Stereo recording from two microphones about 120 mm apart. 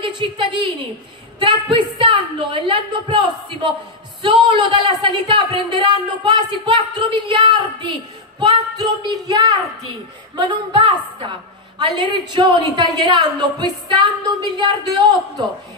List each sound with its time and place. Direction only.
0.0 s a woman's voice: 45° right (ahead or behind)
8.4 s a sound: 40° right (ahead or behind)
9.3 s a woman's voice: 35° right (ahead or behind)